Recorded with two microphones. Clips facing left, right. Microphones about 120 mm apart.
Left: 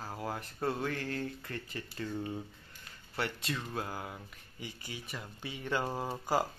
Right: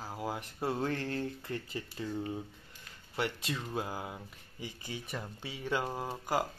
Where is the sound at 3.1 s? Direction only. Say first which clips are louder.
Right 1 dB; 15° right (ahead or behind).